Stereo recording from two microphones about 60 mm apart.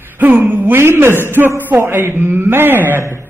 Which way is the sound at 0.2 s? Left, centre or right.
Right.